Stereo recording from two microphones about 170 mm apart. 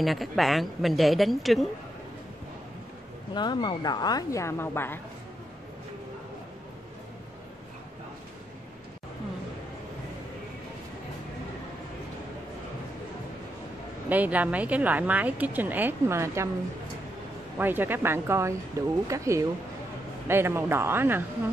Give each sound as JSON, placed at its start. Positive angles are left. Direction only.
{"t": 0.0, "sound": "a woman's voice", "side_deg": 0}
{"t": 3.3, "sound": "a woman's voice", "side_deg": 25}
{"t": 14.0, "sound": "a woman's voice", "side_deg": -10}
{"t": 17.6, "sound": "a woman's voice", "side_deg": -10}